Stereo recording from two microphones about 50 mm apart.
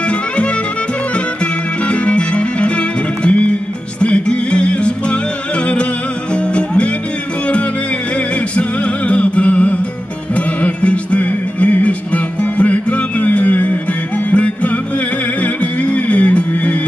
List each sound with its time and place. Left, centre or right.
0.0 s music: left
6.3 s music: left
8.5 s music: left